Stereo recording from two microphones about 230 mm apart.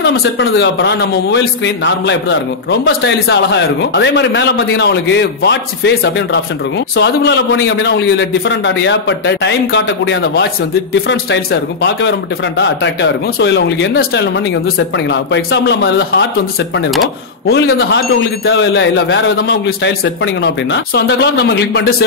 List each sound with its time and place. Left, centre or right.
0.0 s speech: left
12.5 s speech: left
17.5 s speech: left